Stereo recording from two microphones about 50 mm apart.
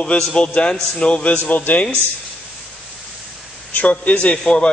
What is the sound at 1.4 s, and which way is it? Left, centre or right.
Speech, left.